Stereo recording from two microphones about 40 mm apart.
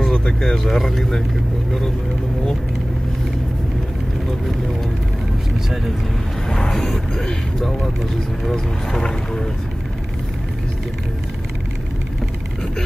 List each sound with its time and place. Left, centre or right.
0.1 s a sound: centre
0.7 s speech: centre
6.5 s speech: centre